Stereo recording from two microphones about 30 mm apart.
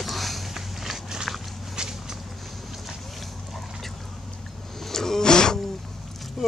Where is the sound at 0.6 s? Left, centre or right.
Centre.